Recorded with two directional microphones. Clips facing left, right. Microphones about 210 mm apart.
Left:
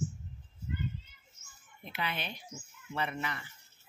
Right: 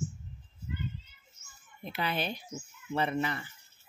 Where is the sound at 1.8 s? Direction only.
35° right (ahead or behind).